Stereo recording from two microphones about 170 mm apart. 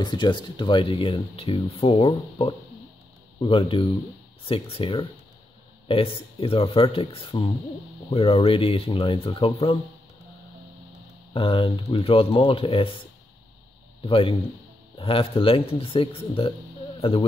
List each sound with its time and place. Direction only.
0.0 s speech: 25° left (ahead or behind)
11.3 s speech: 30° left (ahead or behind)
14.0 s speech: 30° left (ahead or behind)